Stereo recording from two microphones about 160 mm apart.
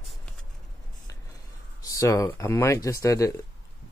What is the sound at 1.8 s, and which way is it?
Speech, 20° left (ahead or behind).